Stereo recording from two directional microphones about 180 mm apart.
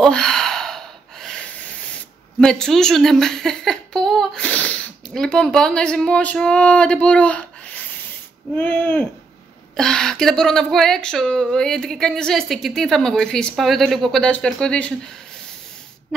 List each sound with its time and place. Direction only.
0.0 s gasp: 5° left (ahead or behind)
2.4 s speech: 5° left (ahead or behind)
8.5 s speech: 5° left (ahead or behind)